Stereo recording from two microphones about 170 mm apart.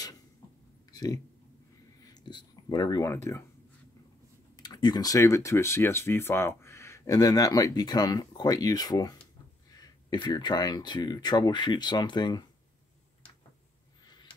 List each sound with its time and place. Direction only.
0.9 s speech: 20° left (ahead or behind)
4.6 s speech: 25° left (ahead or behind)